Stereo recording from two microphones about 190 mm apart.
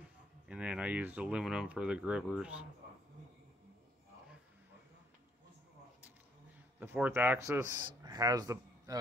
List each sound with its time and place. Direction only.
0.5 s speech: 5° right (ahead or behind)
6.8 s a man's voice: 10° right (ahead or behind)